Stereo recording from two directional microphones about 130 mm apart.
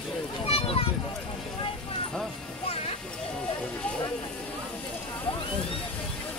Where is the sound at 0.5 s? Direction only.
50° left (ahead or behind).